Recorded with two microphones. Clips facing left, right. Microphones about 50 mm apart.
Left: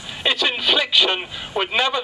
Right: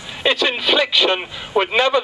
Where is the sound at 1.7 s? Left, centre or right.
Centre.